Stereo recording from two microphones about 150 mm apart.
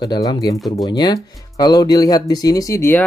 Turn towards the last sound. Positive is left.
turn(degrees=15)  # may be behind; listen again after turning